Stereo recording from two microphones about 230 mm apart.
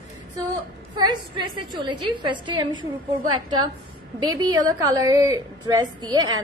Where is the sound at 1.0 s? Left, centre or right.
Right.